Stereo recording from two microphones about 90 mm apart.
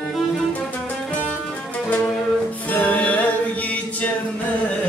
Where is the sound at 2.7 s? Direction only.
20° left (ahead or behind).